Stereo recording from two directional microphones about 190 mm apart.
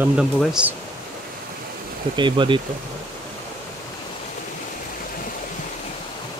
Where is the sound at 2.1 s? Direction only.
25° right (ahead or behind).